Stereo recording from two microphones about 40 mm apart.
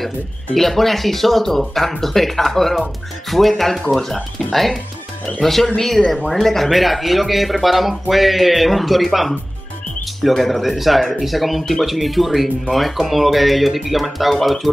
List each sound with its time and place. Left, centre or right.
0.6 s speech: centre
5.9 s speech: centre
6.2 s speech: centre